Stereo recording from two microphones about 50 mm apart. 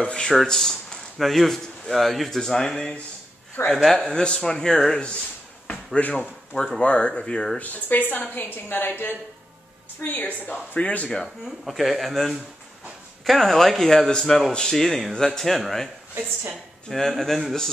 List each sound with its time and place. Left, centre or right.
0.0 s speech: centre
0.3 s speech: centre
6.0 s speech: left
6.5 s speech: centre
6.8 s speech: left
7.5 s a woman's voice: left
11.4 s speech: centre
16.9 s speech: centre